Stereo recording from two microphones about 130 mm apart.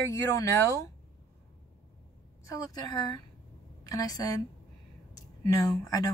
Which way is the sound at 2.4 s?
30° left (ahead or behind).